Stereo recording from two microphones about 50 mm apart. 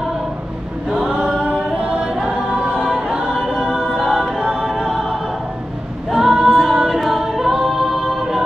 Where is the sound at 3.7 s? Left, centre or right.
Centre.